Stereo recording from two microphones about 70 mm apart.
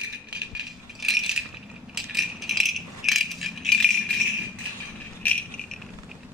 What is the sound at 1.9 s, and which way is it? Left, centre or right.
Rattle, centre.